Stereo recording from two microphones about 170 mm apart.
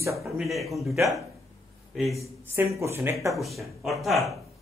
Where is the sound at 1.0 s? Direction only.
20° right (ahead or behind).